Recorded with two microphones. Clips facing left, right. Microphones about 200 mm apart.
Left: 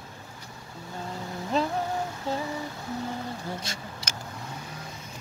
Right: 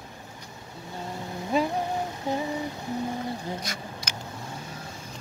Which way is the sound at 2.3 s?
15° right (ahead or behind).